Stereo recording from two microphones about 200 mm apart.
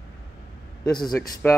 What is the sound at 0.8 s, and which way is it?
Speech, 20° left (ahead or behind).